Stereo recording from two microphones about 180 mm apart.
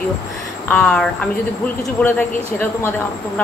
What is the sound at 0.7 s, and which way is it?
A man's voice, 5° left (ahead or behind).